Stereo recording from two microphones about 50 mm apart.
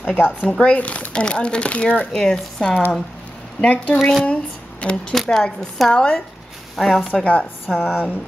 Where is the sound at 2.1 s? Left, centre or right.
Centre.